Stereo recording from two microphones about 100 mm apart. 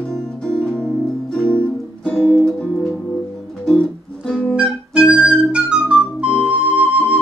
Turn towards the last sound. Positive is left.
turn(degrees=-15)  # may be behind; listen again after turning